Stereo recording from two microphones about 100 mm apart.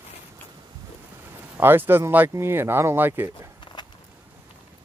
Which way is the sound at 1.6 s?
20° right (ahead or behind).